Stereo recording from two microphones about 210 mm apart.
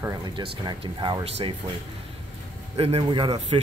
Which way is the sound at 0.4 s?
20° right (ahead or behind).